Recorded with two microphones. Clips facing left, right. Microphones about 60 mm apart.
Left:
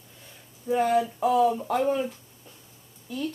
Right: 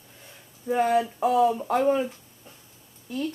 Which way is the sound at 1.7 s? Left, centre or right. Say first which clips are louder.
Right 5 dB; right.